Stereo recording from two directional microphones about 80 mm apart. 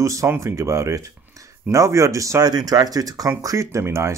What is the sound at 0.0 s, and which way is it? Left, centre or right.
Speech, right.